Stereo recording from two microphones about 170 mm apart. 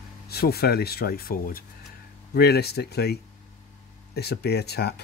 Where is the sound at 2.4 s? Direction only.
70° left (ahead or behind).